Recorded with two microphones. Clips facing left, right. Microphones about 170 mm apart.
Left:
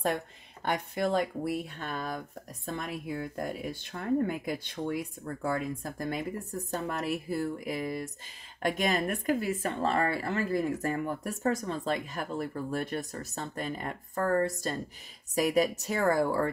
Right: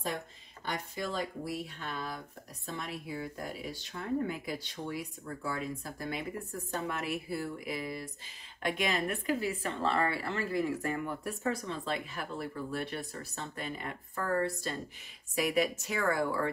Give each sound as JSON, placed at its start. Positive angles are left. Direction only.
{"t": 0.0, "sound": "a woman's voice", "side_deg": 60}